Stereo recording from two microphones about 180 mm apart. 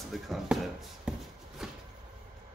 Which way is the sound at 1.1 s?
5° right (ahead or behind).